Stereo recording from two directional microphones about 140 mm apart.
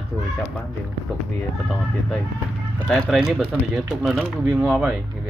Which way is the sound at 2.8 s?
5° left (ahead or behind).